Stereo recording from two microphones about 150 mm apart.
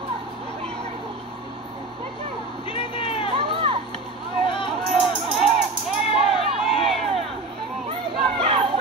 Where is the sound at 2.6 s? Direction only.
30° left (ahead or behind).